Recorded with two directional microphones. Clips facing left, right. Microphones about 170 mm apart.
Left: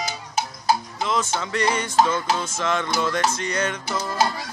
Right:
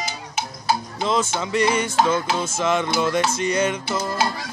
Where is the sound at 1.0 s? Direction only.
30° right (ahead or behind).